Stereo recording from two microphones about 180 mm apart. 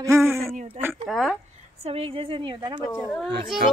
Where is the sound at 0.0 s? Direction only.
15° right (ahead or behind).